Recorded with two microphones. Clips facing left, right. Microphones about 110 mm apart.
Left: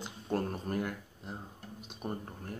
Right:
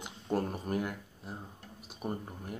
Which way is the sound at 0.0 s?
10° right (ahead or behind).